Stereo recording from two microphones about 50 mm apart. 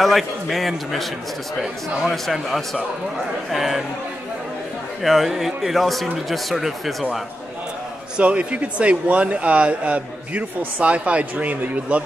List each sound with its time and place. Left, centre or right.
0.0 s a man's voice: centre
2.0 s a man's voice: centre
5.0 s a man's voice: centre
8.2 s speech: right